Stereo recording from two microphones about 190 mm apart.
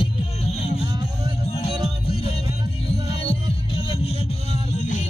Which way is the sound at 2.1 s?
30° left (ahead or behind).